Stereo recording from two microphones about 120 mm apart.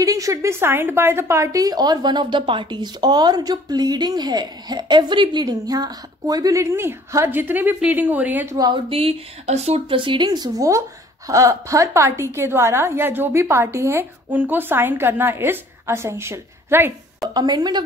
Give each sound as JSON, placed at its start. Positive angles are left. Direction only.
{"t": 0.0, "sound": "a woman's voice", "side_deg": -30}
{"t": 8.5, "sound": "speech", "side_deg": -40}
{"t": 9.8, "sound": "a woman's voice", "side_deg": -45}
{"t": 17.3, "sound": "a woman's voice", "side_deg": -35}